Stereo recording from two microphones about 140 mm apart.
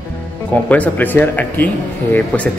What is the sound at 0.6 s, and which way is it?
A man's voice, 10° left (ahead or behind).